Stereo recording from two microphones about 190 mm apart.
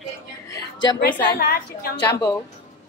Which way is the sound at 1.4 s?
55° left (ahead or behind).